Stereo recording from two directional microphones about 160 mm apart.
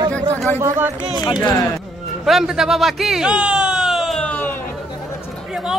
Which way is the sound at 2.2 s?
5° right (ahead or behind).